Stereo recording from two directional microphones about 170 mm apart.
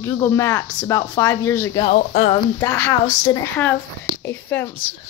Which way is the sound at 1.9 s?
50° left (ahead or behind).